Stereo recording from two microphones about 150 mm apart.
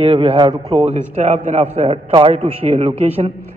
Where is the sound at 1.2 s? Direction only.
50° right (ahead or behind).